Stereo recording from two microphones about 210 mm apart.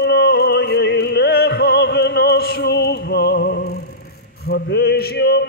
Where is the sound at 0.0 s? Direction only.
55° left (ahead or behind).